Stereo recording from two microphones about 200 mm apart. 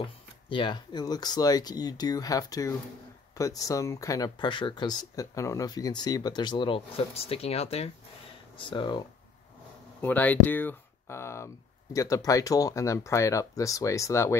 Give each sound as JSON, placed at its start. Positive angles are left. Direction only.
{"t": 0.0, "sound": "speech", "side_deg": 25}
{"t": 10.0, "sound": "speech", "side_deg": 10}